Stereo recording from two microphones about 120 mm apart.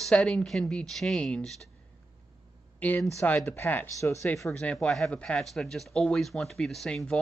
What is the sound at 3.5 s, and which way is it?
Speech, 15° left (ahead or behind).